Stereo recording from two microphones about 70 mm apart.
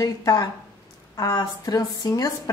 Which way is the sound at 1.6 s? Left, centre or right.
Left.